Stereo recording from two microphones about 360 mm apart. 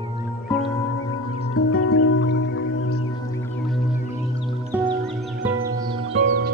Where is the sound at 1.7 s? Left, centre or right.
Left.